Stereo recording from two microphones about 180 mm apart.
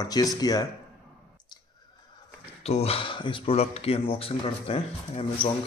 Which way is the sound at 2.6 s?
35° left (ahead or behind).